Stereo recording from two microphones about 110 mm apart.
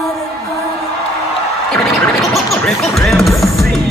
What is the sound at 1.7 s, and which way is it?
Music, 5° left (ahead or behind).